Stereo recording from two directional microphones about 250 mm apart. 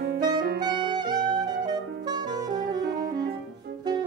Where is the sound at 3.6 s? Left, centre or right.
Right.